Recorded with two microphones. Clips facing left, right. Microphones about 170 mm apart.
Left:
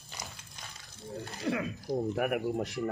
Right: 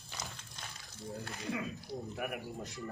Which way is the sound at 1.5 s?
70° left (ahead or behind).